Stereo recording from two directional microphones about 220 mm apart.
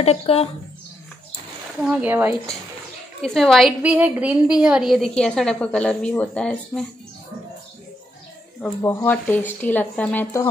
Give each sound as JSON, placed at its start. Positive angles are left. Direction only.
{"t": 0.0, "sound": "speech", "side_deg": 25}
{"t": 1.8, "sound": "a woman's voice", "side_deg": -5}
{"t": 8.5, "sound": "speech", "side_deg": 10}